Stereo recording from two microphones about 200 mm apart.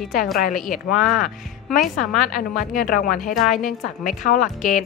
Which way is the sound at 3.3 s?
Centre (ahead or behind).